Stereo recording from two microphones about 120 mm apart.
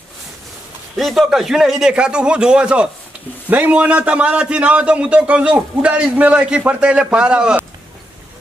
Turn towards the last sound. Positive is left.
turn(degrees=-5)  # may be behind; listen again after turning